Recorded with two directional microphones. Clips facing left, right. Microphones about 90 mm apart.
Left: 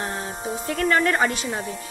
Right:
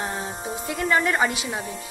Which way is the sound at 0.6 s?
15° right (ahead or behind).